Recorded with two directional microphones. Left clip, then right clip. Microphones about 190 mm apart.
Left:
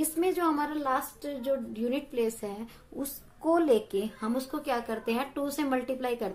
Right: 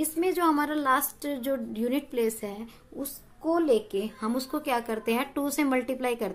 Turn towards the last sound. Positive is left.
turn(degrees=-25)  # may be behind; listen again after turning